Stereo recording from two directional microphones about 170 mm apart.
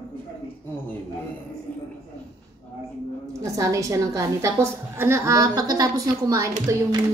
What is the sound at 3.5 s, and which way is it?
A woman's voice, 20° right (ahead or behind).